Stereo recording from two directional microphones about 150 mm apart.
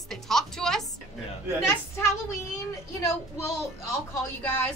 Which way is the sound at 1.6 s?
20° left (ahead or behind).